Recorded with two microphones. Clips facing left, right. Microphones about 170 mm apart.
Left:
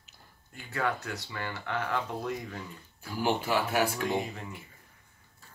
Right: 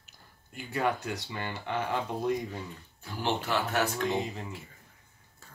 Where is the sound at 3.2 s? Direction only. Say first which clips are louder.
Left 2 dB; 10° left (ahead or behind).